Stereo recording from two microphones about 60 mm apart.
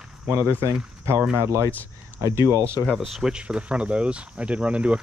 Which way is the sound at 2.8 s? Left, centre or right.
Centre.